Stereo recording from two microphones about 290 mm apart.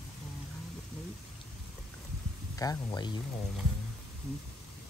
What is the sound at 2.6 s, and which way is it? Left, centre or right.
Speech, centre.